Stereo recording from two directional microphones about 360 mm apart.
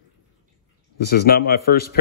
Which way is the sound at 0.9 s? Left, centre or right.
Left.